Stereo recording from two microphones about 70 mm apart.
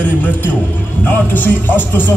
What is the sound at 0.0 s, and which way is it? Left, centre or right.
A man's voice, left.